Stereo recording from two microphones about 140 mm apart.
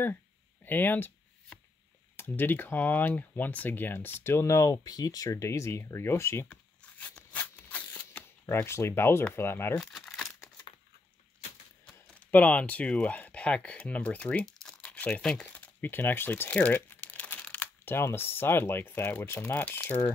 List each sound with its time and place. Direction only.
0.7 s speech: 15° left (ahead or behind)
2.1 s speech: 15° left (ahead or behind)
9.8 s crumpling: 5° left (ahead or behind)
11.8 s speech: 10° left (ahead or behind)